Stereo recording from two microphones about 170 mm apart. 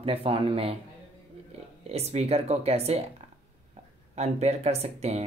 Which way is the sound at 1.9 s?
40° right (ahead or behind).